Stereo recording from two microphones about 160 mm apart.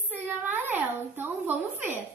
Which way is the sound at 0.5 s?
10° right (ahead or behind).